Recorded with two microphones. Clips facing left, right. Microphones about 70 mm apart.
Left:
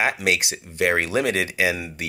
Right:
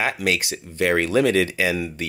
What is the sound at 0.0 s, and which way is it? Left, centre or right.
Speech, left.